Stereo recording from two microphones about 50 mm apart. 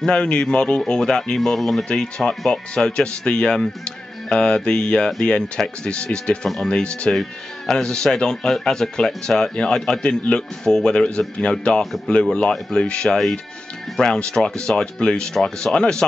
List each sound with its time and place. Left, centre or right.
0.0 s a man's voice: centre
7.2 s a man's voice: centre